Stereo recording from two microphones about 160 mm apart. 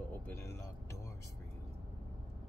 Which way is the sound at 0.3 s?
15° left (ahead or behind).